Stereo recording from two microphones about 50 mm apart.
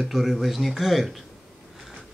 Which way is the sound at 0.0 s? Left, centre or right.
Centre.